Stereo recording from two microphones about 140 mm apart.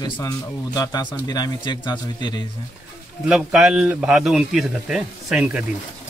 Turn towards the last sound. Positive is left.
turn(degrees=-10)  # may be behind; listen again after turning